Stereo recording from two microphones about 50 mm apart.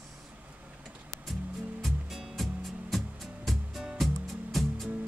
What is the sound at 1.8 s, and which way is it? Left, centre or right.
Music, centre.